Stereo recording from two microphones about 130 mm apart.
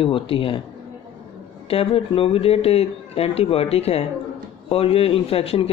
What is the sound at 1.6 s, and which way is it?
A man's voice, 45° left (ahead or behind).